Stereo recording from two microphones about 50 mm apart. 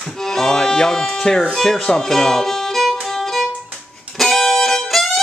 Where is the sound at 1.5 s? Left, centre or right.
Centre.